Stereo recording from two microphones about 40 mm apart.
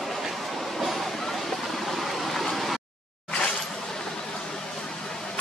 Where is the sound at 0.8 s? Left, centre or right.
Centre.